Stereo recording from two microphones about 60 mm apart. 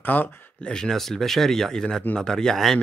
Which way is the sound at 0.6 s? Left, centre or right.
Centre.